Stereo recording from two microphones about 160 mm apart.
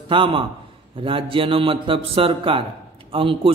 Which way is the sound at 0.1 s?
35° right (ahead or behind).